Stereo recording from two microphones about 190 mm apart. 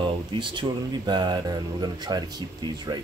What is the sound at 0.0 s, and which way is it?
Speech, 25° right (ahead or behind).